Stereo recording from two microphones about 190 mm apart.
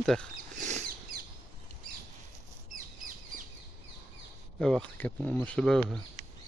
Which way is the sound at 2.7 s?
45° right (ahead or behind).